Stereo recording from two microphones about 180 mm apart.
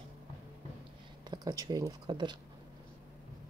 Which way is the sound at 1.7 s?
20° right (ahead or behind).